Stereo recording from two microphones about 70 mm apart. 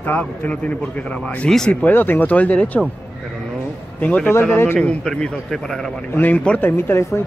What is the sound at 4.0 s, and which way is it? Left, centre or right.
Speech, left.